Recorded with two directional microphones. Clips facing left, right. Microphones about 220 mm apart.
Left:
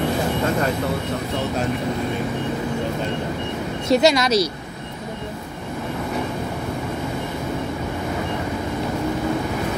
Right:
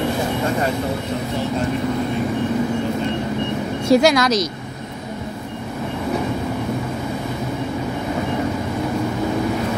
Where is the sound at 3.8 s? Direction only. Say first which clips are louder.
Right 2 dB; 25° left (ahead or behind).